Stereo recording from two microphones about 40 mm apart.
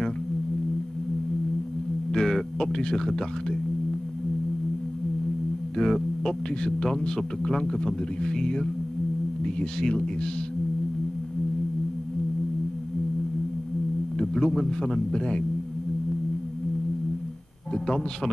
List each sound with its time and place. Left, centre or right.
2.1 s speech: centre
5.8 s a man's voice: centre
14.1 s a man's voice: left
17.8 s speech: centre